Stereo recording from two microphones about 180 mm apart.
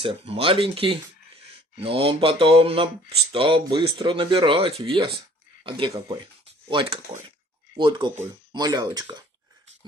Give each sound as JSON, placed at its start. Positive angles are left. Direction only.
{"t": 0.0, "sound": "speech", "side_deg": -30}